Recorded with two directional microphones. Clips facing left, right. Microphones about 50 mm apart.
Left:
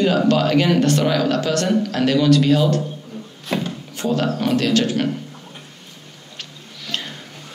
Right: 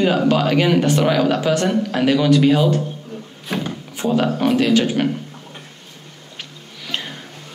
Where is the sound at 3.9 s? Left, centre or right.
Centre.